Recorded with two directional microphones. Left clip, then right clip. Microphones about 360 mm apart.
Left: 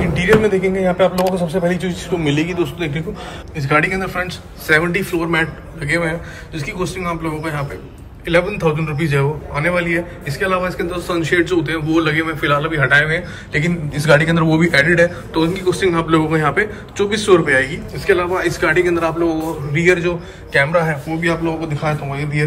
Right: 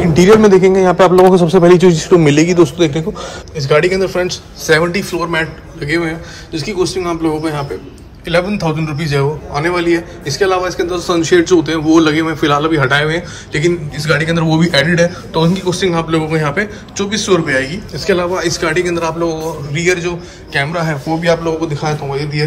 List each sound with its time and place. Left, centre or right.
0.0 s a sound: centre
0.6 s a man's voice: right
1.8 s a man's voice: centre
3.5 s a man's voice: centre